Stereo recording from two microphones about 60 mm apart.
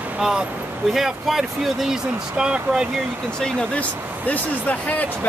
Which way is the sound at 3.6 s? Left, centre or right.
Left.